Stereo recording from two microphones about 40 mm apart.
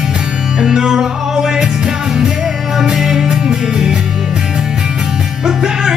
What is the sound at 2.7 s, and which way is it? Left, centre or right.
Music, centre.